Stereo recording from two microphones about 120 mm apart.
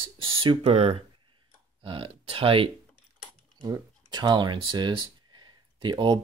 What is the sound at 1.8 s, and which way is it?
Speech, 45° right (ahead or behind).